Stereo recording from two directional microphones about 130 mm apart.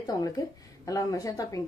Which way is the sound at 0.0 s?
30° left (ahead or behind).